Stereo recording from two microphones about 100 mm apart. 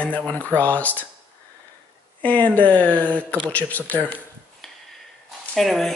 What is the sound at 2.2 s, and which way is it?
Speech, 15° left (ahead or behind).